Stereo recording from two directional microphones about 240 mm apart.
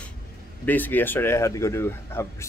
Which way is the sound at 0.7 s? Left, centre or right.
Centre.